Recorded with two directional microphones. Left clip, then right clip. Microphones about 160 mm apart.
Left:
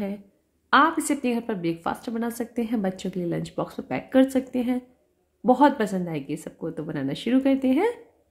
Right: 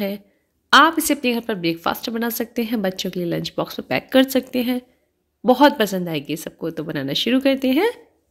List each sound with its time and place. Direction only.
0.7 s a woman's voice: 15° right (ahead or behind)